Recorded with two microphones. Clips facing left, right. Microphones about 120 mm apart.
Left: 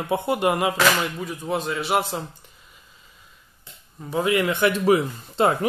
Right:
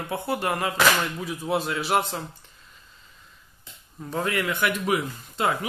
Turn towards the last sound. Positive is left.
turn(degrees=30)  # may be behind; listen again after turning